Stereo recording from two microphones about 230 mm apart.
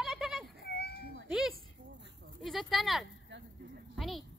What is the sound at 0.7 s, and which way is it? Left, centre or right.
Children playing, left.